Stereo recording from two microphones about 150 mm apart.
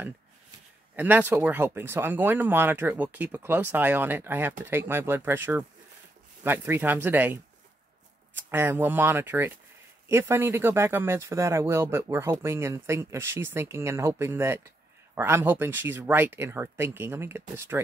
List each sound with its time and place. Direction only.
0.9 s speech: 10° right (ahead or behind)
8.4 s speech: 15° right (ahead or behind)